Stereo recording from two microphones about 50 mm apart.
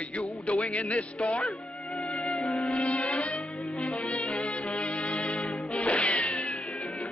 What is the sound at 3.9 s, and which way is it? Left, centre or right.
Music, left.